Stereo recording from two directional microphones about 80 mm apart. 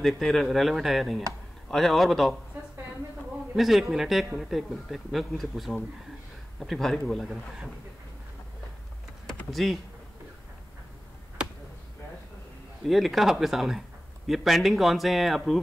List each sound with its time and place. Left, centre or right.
0.2 s speech: centre
2.5 s a sound: right
3.5 s speech: centre
9.5 s speech: centre
12.8 s speech: centre